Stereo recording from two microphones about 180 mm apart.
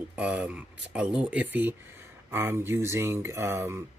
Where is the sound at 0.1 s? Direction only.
5° right (ahead or behind).